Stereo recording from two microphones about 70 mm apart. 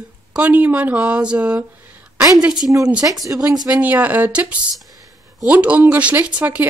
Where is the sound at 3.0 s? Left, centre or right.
Right.